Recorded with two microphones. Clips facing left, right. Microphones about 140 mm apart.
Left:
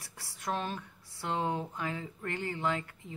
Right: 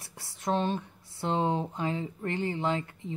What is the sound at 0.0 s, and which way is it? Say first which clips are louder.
Speech: right 5 dB; 25° right (ahead or behind).